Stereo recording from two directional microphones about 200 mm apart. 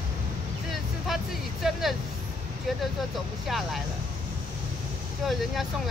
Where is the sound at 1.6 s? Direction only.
Centre (ahead or behind).